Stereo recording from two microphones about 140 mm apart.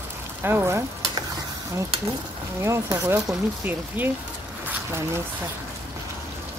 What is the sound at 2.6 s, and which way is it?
Speech, 20° right (ahead or behind).